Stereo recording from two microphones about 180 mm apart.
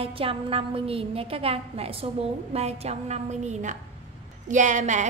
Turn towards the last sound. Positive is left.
turn(degrees=-40)  # may be behind; listen again after turning